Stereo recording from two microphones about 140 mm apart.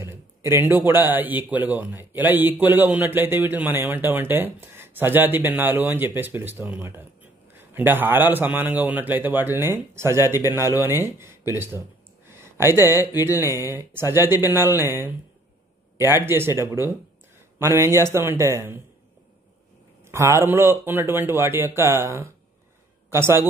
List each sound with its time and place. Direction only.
0.0 s a man's voice: 15° right (ahead or behind)
20.1 s a man's voice: 20° right (ahead or behind)